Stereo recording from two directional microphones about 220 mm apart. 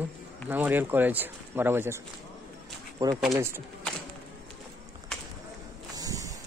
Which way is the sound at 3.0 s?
15° right (ahead or behind).